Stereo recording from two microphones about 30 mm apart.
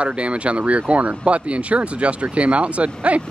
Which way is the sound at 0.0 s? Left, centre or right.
Right.